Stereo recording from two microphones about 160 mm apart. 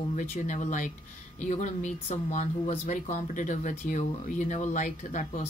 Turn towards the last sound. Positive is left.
turn(degrees=50)  # may be behind; listen again after turning